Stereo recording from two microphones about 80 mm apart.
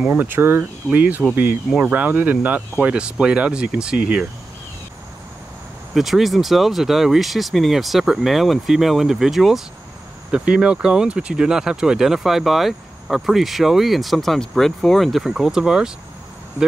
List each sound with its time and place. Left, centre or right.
0.1 s speech: right; by 4.3 s centre
5.9 s speech: centre